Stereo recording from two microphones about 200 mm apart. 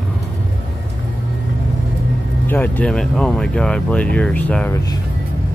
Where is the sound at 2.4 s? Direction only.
10° left (ahead or behind).